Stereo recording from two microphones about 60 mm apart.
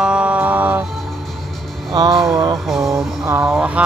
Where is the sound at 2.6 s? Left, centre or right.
Centre.